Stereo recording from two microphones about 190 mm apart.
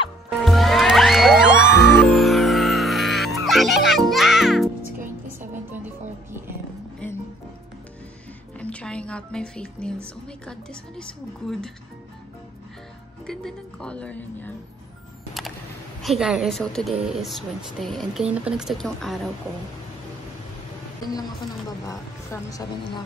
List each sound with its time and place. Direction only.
0.4 s music: centre (ahead or behind)
8.5 s a woman's voice: 5° left (ahead or behind)
13.3 s a woman's voice: centre (ahead or behind)
16.0 s a woman's voice: centre (ahead or behind)
21.1 s speech: 20° left (ahead or behind)